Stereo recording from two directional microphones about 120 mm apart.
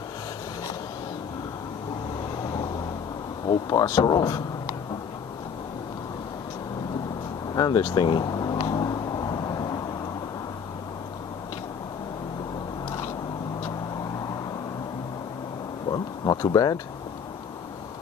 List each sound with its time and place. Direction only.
3.4 s speech: 30° left (ahead or behind)
7.5 s vehicle: 35° left (ahead or behind)
15.9 s a sound: 35° left (ahead or behind)